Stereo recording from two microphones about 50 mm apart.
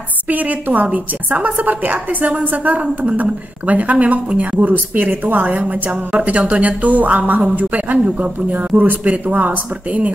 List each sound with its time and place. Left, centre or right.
0.3 s a woman's voice: right